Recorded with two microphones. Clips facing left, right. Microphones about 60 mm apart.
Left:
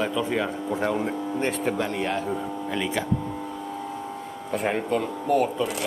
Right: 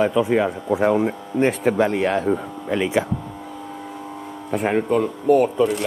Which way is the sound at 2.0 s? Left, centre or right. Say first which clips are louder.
Right 7 dB; right.